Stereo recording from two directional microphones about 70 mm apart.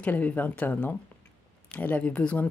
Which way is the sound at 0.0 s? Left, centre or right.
Left.